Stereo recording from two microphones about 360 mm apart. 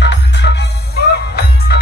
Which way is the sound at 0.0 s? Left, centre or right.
Left.